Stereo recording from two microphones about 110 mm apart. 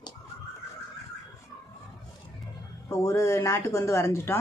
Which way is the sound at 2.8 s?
30° left (ahead or behind).